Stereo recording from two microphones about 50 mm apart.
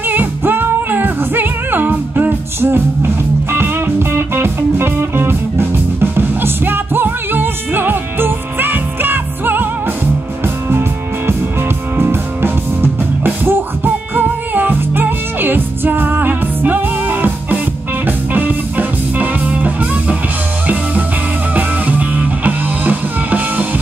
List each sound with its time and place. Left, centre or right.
0.1 s music: right
2.6 s music: right
10.7 s music: right
21.5 s music: right